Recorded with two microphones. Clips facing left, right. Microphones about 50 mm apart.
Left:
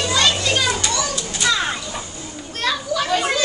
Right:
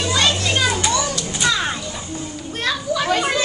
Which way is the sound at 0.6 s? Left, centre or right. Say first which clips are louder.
Right 2 dB; centre.